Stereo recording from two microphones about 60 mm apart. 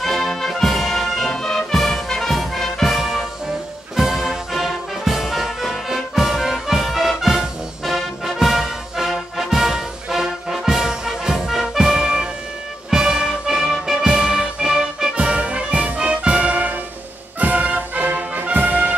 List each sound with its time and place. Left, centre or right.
0.0 s music: centre; by 18.9 s right